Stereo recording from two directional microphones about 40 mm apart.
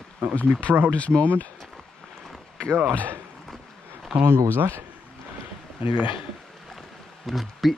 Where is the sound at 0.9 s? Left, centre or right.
Left.